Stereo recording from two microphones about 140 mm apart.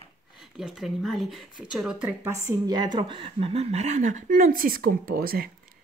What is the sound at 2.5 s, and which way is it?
A woman's voice, 30° right (ahead or behind).